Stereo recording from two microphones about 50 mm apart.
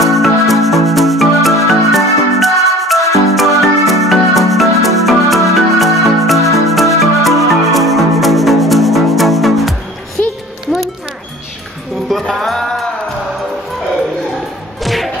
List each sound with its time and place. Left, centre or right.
0.0 s music: centre
10.2 s music: left
12.1 s music: centre
14.8 s music: centre